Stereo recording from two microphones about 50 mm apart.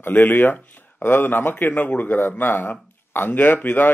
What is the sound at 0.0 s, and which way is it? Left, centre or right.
A man's voice, left.